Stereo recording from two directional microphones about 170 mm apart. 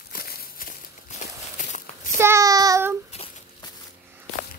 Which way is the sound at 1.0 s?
45° left (ahead or behind).